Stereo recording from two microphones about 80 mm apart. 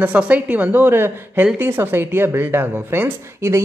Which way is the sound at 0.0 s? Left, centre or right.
Centre.